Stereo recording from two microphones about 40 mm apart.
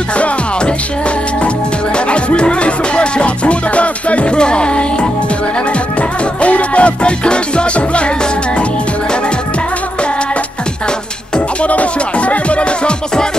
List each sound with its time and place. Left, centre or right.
2.0 s music: left
11.3 s music: left